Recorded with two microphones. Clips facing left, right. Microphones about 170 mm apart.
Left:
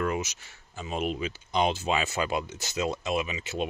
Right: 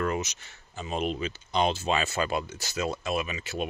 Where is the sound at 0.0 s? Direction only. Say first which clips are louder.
Even; 10° left (ahead or behind).